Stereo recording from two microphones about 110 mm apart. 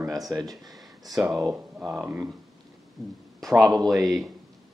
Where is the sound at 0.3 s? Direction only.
35° right (ahead or behind).